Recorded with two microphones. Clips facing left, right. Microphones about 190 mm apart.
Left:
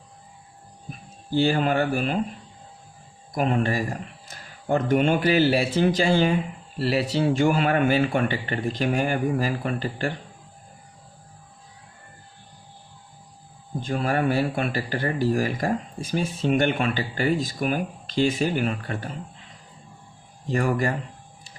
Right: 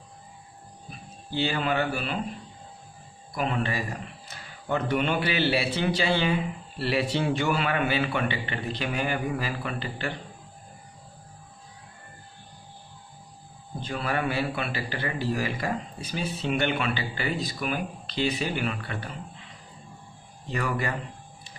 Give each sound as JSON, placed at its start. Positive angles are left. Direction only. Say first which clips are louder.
{"t": 0.8, "sound": "speech", "louder": "left 5 dB", "side_deg": 45}
{"t": 3.3, "sound": "speech", "louder": "left 5 dB", "side_deg": 45}
{"t": 13.7, "sound": "speech", "louder": "left 5 dB", "side_deg": 45}
{"t": 20.4, "sound": "speech", "louder": "left 6 dB", "side_deg": 45}